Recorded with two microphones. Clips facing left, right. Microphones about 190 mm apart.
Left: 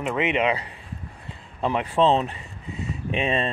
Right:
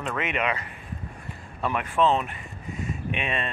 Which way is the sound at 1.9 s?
30° left (ahead or behind).